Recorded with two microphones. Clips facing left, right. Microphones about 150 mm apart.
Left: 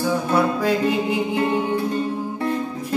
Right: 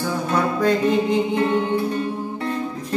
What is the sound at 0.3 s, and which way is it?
Music, 10° left (ahead or behind).